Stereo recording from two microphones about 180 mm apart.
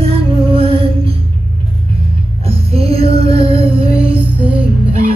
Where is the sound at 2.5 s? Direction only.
35° right (ahead or behind).